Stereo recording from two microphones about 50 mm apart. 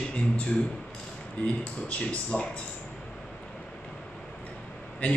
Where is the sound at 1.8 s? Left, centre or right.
Left.